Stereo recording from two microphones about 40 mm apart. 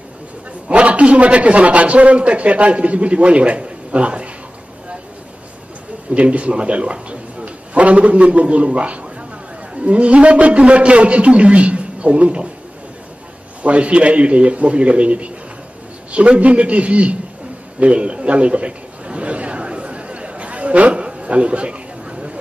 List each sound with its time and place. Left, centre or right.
0.7 s a man's voice: right
6.1 s a man's voice: right
13.6 s a man's voice: right
17.7 s a sound: right